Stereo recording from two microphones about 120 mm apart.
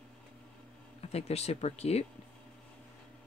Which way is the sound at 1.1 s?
60° left (ahead or behind).